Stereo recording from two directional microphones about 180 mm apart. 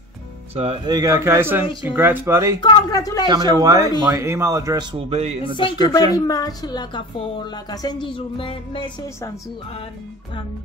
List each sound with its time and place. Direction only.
0.6 s speech: 30° right (ahead or behind)
2.6 s a woman's voice: 25° left (ahead or behind)
3.3 s speech: 20° right (ahead or behind)
4.9 s speech: 35° right (ahead or behind)
5.6 s a woman's voice: 20° left (ahead or behind)